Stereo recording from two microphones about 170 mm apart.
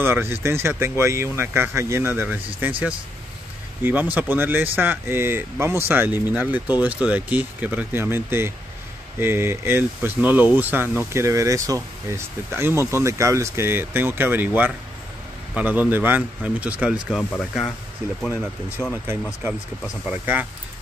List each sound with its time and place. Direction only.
0.0 s speech: 15° right (ahead or behind)
3.8 s speech: 10° right (ahead or behind)
20.1 s speech: 10° right (ahead or behind)